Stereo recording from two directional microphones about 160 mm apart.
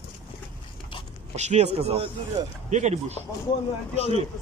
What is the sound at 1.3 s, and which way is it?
Speech, 45° right (ahead or behind).